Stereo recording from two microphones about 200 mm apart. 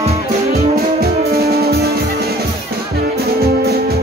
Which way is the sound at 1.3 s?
50° right (ahead or behind).